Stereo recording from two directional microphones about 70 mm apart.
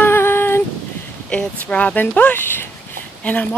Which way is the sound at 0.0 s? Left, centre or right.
Left.